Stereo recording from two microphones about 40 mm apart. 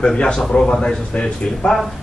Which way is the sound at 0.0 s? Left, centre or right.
Left.